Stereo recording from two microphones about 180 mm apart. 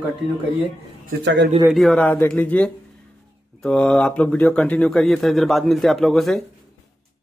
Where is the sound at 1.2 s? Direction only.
70° right (ahead or behind).